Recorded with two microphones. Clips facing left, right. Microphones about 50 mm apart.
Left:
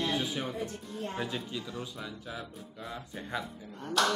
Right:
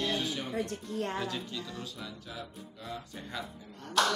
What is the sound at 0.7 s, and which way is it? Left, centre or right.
Speech, right.